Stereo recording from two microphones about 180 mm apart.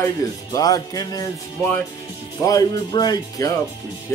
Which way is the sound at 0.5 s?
20° left (ahead or behind).